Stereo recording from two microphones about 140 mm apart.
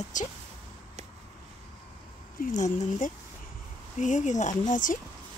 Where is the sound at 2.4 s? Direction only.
65° left (ahead or behind).